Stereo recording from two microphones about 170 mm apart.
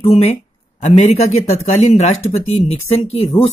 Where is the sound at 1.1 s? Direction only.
40° left (ahead or behind).